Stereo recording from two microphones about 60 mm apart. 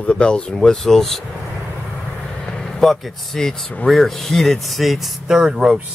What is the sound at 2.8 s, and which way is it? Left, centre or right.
Speech, centre.